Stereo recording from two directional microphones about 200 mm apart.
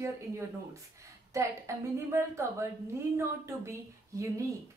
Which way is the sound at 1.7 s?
15° right (ahead or behind).